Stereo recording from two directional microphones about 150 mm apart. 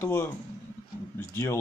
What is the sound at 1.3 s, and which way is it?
Speech, 15° left (ahead or behind).